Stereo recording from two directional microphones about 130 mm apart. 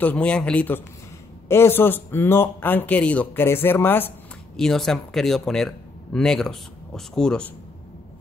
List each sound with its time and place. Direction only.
0.0 s speech: 10° left (ahead or behind)
4.6 s speech: 5° left (ahead or behind)